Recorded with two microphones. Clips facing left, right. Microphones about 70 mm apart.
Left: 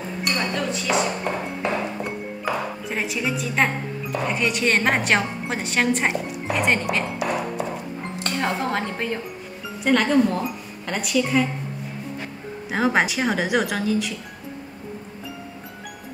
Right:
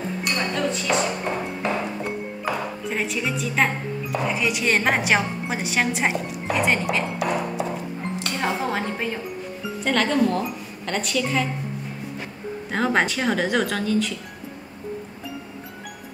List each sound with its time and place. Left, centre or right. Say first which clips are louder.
0.2 s chink: even; centre
1.6 s music: even; centre
8.4 s speech: left 1 dB; centre
12.7 s speech: left 1 dB; centre